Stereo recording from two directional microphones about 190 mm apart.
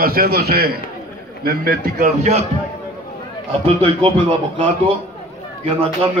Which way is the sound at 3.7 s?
30° right (ahead or behind).